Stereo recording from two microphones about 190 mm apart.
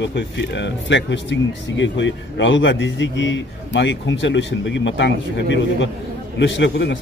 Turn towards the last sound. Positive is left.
turn(degrees=70)  # may be behind; listen again after turning